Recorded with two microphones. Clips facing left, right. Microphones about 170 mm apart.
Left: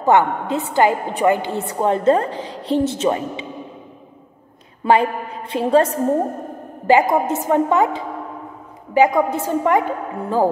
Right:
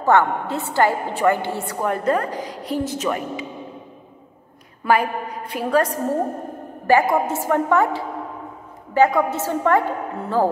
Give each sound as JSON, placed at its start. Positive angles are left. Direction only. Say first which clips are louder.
{"t": 0.0, "sound": "a woman's voice", "louder": "left 2 dB", "side_deg": 15}
{"t": 4.8, "sound": "a woman's voice", "louder": "left 3 dB", "side_deg": 25}